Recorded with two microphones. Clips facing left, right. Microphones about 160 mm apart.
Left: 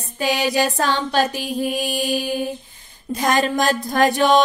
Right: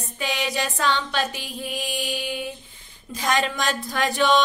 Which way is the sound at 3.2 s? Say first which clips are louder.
Left 5 dB; 40° left (ahead or behind).